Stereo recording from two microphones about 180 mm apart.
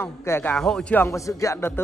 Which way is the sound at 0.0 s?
15° left (ahead or behind).